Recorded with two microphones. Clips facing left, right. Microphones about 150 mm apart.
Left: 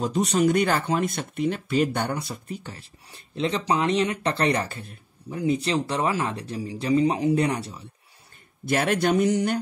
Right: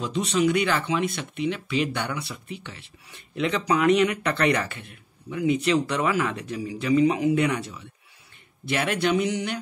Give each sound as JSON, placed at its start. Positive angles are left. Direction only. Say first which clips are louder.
{"t": 0.0, "sound": "speech", "louder": "left 2 dB", "side_deg": 45}
{"t": 8.6, "sound": "speech", "louder": "left 2 dB", "side_deg": 45}